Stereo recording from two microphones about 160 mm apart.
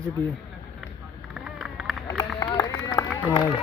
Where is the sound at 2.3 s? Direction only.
20° left (ahead or behind).